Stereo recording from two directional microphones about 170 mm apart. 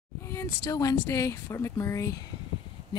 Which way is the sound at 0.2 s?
15° left (ahead or behind).